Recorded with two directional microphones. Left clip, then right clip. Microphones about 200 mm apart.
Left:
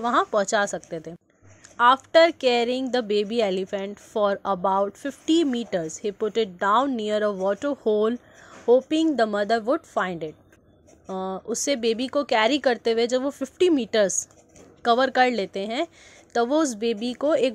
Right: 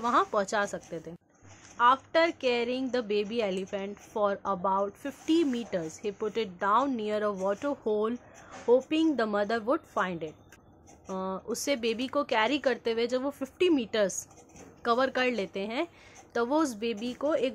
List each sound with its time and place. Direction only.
0.0 s a woman's voice: 25° left (ahead or behind)